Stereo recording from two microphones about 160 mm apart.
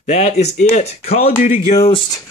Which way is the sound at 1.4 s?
55° left (ahead or behind).